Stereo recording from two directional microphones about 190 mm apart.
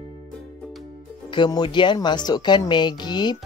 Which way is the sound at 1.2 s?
25° left (ahead or behind).